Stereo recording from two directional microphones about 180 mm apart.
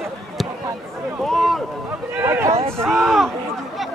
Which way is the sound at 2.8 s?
Centre (ahead or behind).